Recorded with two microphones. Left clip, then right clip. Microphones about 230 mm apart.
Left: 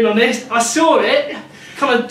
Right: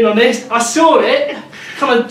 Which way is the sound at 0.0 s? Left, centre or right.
Centre.